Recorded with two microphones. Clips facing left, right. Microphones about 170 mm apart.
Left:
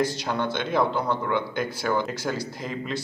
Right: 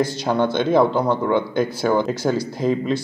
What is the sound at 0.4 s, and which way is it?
A man's voice, 30° right (ahead or behind).